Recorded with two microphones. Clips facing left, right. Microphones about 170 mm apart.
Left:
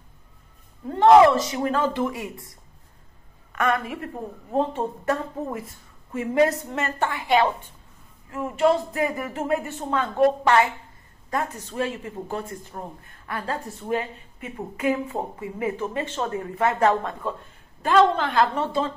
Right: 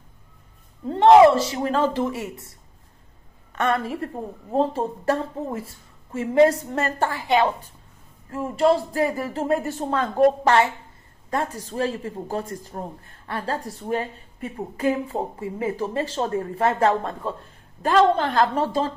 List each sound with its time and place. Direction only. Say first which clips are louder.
0.8 s a woman's voice: right 2 dB; 25° right (ahead or behind)
3.5 s a woman's voice: right 1 dB; 30° right (ahead or behind)
7.2 s a woman's voice: even; 20° right (ahead or behind)
8.5 s a woman's voice: right 1 dB; 35° right (ahead or behind)